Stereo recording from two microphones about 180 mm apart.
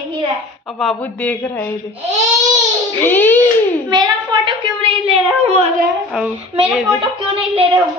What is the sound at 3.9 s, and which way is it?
A woman's voice, 25° right (ahead or behind).